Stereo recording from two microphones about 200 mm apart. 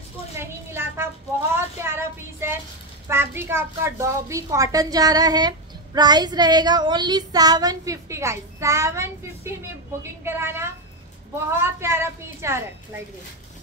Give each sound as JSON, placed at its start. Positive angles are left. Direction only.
{"t": 0.4, "sound": "a sound", "side_deg": -10}
{"t": 3.1, "sound": "a woman's voice", "side_deg": -10}
{"t": 5.9, "sound": "child singing", "side_deg": -20}
{"t": 10.2, "sound": "a woman's voice", "side_deg": -10}